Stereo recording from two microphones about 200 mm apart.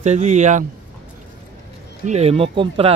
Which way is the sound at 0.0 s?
35° right (ahead or behind).